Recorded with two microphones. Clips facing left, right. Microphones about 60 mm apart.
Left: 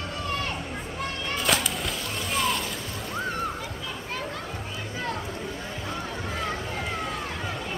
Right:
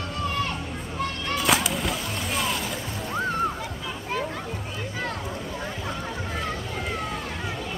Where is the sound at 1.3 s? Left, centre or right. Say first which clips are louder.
Right 3 dB; centre.